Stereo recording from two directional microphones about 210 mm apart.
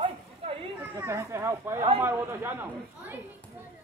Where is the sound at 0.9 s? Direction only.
10° right (ahead or behind).